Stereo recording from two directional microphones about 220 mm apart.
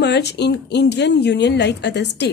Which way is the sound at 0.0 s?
50° left (ahead or behind).